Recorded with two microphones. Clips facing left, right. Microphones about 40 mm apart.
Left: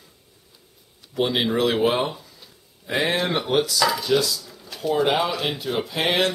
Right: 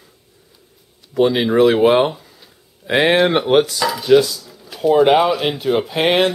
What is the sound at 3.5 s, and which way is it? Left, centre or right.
Chopping, right.